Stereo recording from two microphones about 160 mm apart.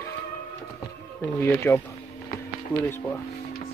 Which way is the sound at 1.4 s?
15° left (ahead or behind).